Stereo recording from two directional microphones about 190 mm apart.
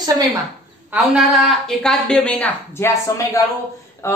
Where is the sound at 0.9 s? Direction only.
5° right (ahead or behind).